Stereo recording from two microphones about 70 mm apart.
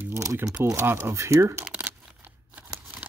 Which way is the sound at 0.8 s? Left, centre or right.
Right.